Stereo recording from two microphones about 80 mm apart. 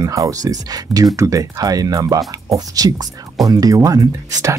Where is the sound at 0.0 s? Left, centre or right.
Right.